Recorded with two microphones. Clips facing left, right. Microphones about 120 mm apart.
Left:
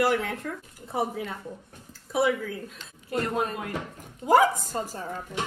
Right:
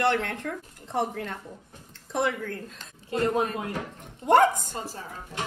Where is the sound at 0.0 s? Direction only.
5° left (ahead or behind).